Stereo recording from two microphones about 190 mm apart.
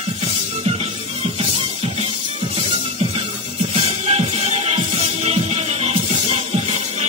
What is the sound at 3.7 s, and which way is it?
Music, 30° right (ahead or behind).